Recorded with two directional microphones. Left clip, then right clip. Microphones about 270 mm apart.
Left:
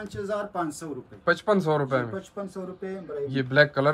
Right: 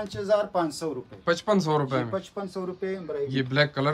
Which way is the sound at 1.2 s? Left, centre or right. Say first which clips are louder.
Left 1 dB; centre.